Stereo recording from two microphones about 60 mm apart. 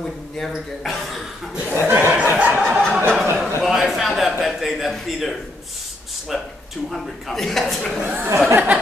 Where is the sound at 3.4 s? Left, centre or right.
Centre.